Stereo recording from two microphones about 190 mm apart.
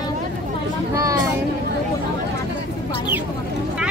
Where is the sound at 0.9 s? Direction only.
15° right (ahead or behind).